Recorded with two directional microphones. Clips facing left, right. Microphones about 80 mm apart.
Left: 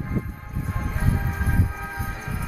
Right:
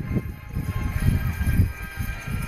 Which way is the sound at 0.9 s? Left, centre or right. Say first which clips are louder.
Left 1 dB; left.